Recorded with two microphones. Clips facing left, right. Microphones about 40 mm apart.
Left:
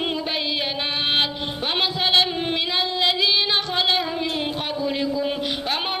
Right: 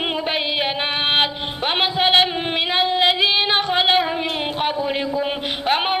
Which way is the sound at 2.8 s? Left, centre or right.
Right.